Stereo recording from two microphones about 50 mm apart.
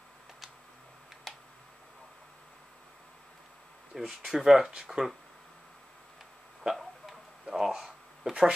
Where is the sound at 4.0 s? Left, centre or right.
Centre.